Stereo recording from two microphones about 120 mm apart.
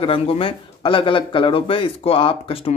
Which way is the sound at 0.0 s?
50° left (ahead or behind).